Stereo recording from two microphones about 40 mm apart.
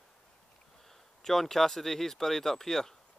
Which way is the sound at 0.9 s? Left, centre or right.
Centre.